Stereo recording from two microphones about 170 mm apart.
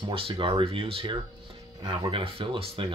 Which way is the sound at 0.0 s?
30° right (ahead or behind).